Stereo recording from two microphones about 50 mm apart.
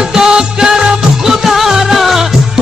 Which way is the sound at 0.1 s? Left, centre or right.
Centre.